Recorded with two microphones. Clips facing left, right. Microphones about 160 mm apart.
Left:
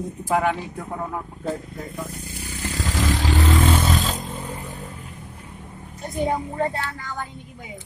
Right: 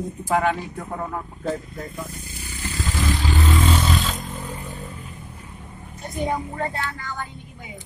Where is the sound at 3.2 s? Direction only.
75° left (ahead or behind).